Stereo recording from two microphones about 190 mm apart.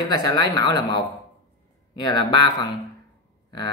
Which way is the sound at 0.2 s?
20° left (ahead or behind).